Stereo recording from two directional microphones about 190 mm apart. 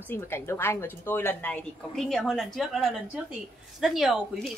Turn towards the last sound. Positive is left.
turn(degrees=0)  # may be behind; listen again after turning